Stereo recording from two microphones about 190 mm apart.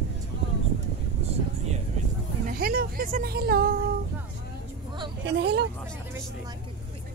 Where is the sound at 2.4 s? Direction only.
50° right (ahead or behind).